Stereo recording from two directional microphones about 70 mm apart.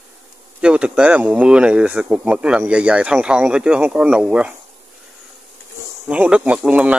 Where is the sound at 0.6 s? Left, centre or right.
Centre.